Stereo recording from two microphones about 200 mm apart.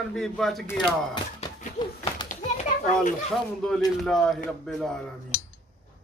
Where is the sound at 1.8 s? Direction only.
20° left (ahead or behind).